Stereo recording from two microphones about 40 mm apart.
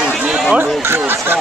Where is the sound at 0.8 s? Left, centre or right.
Right.